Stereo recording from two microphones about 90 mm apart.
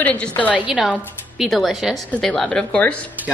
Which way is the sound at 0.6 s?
10° right (ahead or behind).